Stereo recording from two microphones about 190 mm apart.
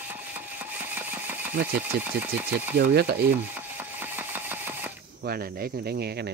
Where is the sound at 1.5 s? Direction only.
55° right (ahead or behind).